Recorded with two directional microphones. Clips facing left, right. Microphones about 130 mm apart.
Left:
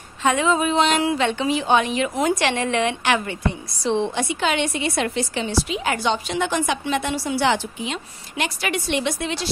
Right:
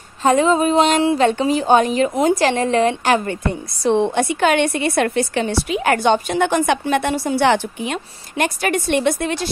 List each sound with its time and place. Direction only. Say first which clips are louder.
0.2 s a woman's voice: right 5 dB; 40° right (ahead or behind)
3.8 s a woman's voice: right 5 dB; 55° right (ahead or behind)